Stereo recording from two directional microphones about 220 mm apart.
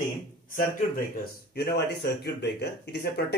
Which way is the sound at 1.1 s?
45° left (ahead or behind).